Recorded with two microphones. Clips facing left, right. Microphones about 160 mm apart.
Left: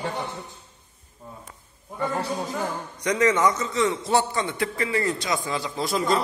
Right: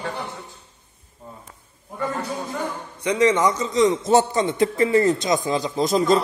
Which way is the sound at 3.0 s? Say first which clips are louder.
Right 3 dB; 30° right (ahead or behind).